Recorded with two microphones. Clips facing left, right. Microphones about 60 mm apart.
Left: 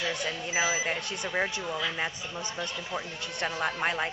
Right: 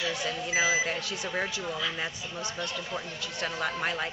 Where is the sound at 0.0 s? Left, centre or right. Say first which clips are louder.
Even; centre.